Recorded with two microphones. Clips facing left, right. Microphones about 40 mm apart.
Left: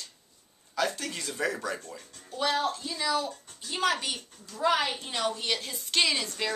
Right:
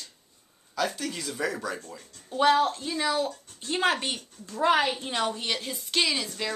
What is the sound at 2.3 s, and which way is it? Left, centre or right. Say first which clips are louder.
A child's voice: right 6 dB; right.